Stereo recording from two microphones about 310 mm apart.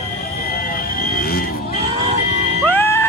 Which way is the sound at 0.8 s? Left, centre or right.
Left.